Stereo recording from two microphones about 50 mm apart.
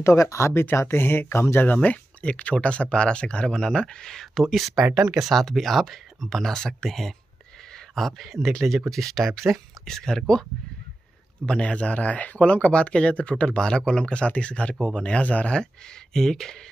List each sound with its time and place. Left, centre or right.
0.0 s speech: left
0.9 s speech: left
1.7 s speech: left; by 10.4 s centre
11.4 s speech: left
15.5 s speech: centre